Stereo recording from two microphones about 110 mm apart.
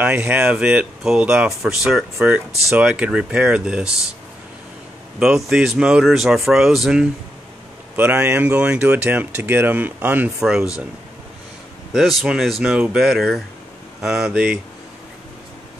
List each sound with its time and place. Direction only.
0.0 s speech: 15° right (ahead or behind)
5.2 s speech: 5° right (ahead or behind)
7.9 s speech: 15° right (ahead or behind)
10.4 s speech: 5° right (ahead or behind)
11.9 s speech: centre (ahead or behind)